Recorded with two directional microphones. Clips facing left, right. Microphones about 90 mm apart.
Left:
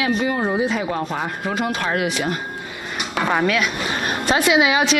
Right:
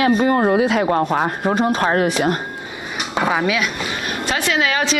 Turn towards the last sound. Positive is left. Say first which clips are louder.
# left 3 dB
turn(degrees=15)  # may be behind; listen again after turning